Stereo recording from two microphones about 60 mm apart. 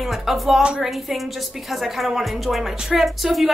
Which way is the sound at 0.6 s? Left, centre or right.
Centre.